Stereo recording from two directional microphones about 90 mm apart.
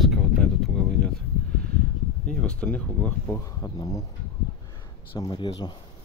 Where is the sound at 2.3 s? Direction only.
10° left (ahead or behind).